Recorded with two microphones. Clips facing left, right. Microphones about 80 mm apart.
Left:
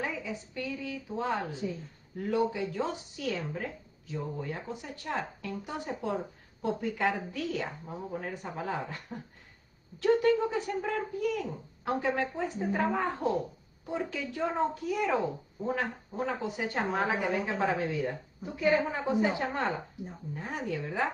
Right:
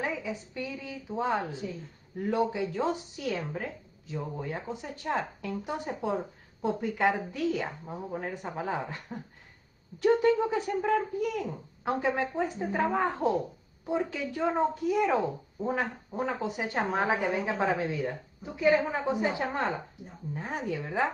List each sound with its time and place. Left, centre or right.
0.0 s a woman's voice: right